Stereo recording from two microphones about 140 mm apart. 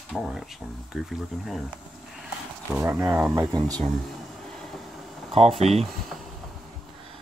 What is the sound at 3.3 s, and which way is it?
Speech, 25° right (ahead or behind).